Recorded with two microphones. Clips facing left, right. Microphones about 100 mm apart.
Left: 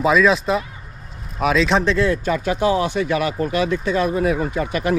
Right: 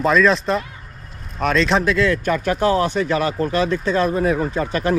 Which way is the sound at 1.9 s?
75° right (ahead or behind).